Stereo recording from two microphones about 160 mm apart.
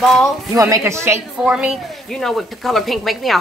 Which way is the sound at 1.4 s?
5° right (ahead or behind).